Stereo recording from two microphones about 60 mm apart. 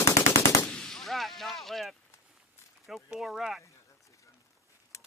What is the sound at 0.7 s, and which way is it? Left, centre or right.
Gunshot, centre.